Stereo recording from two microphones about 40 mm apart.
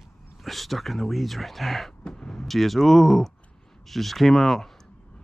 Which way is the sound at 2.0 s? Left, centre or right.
Centre.